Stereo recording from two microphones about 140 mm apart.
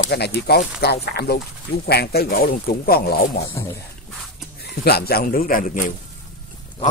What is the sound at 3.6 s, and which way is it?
Speech, 20° left (ahead or behind).